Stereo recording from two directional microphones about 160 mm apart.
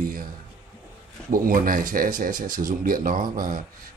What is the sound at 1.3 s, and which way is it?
Speech, 60° right (ahead or behind).